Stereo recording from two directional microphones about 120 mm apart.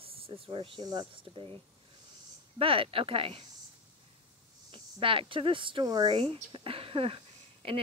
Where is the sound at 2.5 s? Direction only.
50° right (ahead or behind).